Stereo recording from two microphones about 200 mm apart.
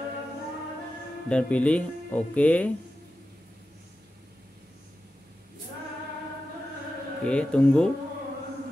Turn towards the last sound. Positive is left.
turn(degrees=5)  # may be behind; listen again after turning